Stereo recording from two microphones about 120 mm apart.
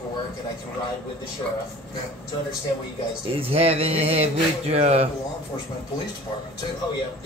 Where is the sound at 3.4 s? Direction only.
55° right (ahead or behind).